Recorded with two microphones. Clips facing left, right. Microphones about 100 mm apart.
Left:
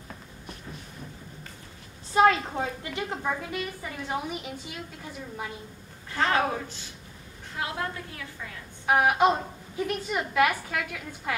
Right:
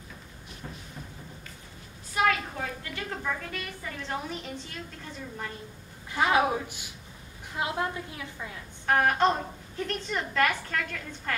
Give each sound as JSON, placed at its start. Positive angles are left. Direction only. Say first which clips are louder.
{"t": 2.1, "sound": "a woman's voice", "louder": "left 6 dB", "side_deg": 25}
{"t": 6.1, "sound": "a woman's voice", "louder": "right 1 dB", "side_deg": -10}
{"t": 8.8, "sound": "a woman's voice", "louder": "left 2 dB", "side_deg": 10}